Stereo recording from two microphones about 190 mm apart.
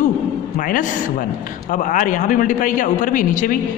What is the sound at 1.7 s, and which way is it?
A man's voice, 40° left (ahead or behind).